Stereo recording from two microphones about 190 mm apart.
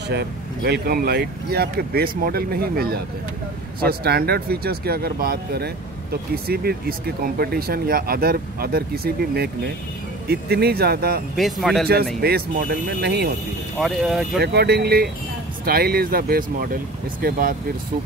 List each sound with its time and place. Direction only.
0.1 s speech: 60° right (ahead or behind)
11.3 s speech: centre (ahead or behind)
12.2 s speech: 55° right (ahead or behind)
13.7 s speech: centre (ahead or behind)
14.4 s speech: 60° right (ahead or behind)